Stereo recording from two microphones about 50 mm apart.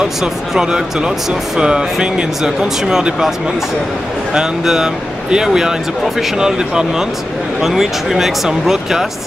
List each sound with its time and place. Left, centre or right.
0.0 s speech: centre